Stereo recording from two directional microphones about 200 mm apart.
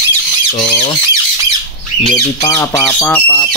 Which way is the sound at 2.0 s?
15° left (ahead or behind).